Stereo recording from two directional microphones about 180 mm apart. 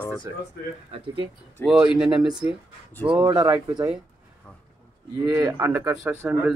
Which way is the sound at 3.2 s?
25° right (ahead or behind).